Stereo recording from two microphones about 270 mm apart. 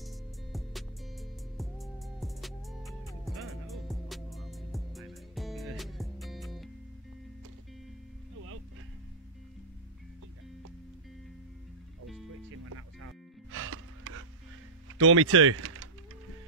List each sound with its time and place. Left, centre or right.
0.0 s music: centre
12.6 s music: right
14.9 s speech: right